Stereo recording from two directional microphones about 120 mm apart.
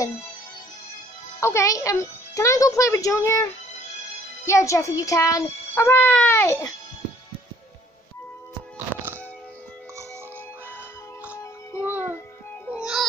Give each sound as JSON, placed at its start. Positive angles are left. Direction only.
{"t": 1.4, "sound": "a child's voice", "side_deg": 25}
{"t": 4.5, "sound": "a child's voice", "side_deg": 25}
{"t": 11.8, "sound": "speech", "side_deg": -15}
{"t": 12.7, "sound": "music", "side_deg": -5}